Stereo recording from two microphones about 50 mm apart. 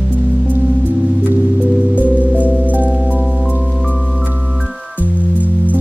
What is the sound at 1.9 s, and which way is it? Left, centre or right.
Music, right.